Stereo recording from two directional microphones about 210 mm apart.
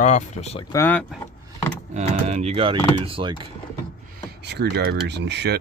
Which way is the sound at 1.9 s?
30° right (ahead or behind).